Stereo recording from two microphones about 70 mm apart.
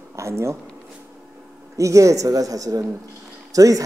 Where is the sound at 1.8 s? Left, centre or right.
Right.